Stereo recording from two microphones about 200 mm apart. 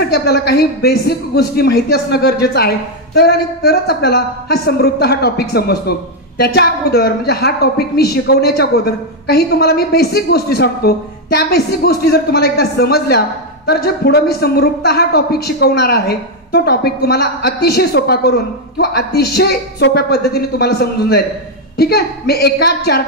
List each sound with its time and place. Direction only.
0.1 s speech: 50° left (ahead or behind)